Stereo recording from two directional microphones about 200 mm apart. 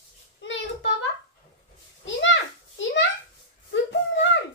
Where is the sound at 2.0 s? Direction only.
70° left (ahead or behind).